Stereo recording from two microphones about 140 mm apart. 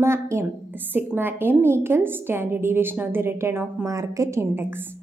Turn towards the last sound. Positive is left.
turn(degrees=-15)  # may be behind; listen again after turning